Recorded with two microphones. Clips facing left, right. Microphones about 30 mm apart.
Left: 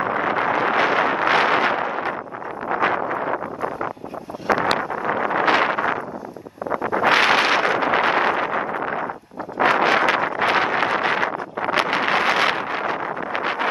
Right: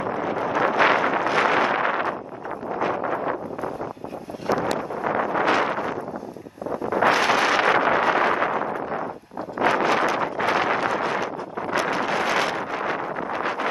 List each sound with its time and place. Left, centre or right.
0.0 s wind noise: left
2.7 s wind noise: left
4.5 s vehicle: left
5.2 s wind noise: left
7.1 s wind noise: left
7.8 s a sound: left
9.6 s wind noise: left